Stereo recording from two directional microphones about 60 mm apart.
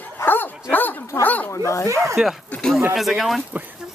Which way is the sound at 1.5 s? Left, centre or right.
Left.